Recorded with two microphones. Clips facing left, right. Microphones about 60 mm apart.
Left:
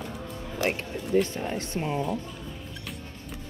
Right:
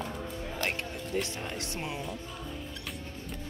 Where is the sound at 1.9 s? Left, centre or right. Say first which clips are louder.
Left 9 dB; left.